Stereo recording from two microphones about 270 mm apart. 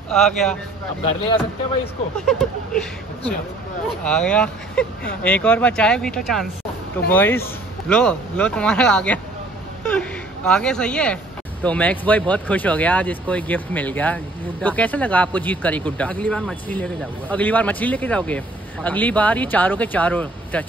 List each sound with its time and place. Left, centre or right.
0.1 s speech: centre
1.0 s speech: centre
2.2 s speech: centre